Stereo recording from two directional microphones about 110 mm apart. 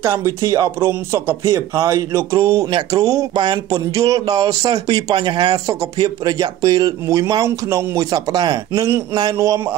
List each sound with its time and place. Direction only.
0.0 s speech: 25° right (ahead or behind)
3.3 s a sound: 45° right (ahead or behind)
3.9 s speech: 30° right (ahead or behind)